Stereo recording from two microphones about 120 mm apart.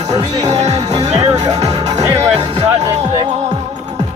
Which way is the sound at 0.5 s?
70° right (ahead or behind).